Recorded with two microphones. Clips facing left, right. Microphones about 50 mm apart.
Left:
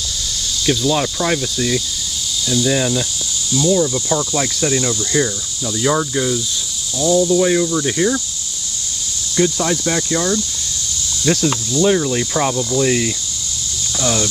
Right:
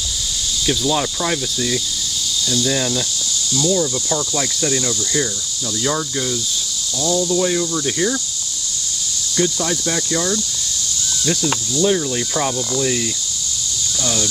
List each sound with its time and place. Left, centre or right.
0.7 s speech: centre
9.4 s speech: centre
11.2 s speech: left